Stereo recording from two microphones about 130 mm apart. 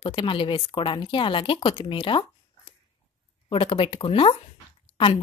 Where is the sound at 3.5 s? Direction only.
45° left (ahead or behind).